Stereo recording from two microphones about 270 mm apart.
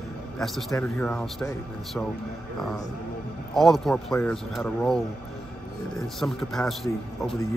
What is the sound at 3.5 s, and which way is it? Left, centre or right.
Speech, centre.